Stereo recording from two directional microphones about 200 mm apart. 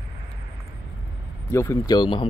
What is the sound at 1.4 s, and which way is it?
Speech, 15° left (ahead or behind).